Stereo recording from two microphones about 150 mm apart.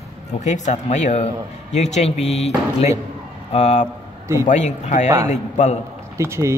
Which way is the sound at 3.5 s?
45° left (ahead or behind).